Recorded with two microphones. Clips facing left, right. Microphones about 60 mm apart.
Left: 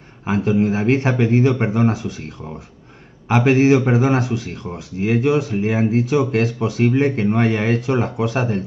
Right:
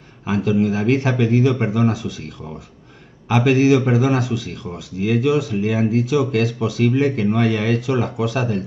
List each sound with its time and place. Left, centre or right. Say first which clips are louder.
0.3 s speech: left 1 dB; left
3.3 s speech: left 1 dB; left